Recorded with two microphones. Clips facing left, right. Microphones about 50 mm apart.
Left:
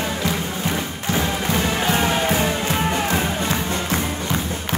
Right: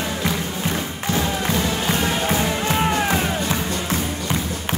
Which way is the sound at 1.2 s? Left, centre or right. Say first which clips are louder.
Left 1 dB; left.